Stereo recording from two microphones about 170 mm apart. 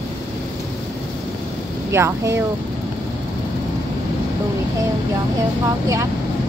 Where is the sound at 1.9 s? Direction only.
15° right (ahead or behind).